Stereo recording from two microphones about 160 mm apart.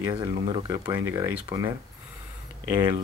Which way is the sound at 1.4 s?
25° right (ahead or behind).